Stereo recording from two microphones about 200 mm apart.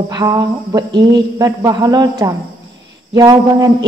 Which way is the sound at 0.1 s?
20° right (ahead or behind).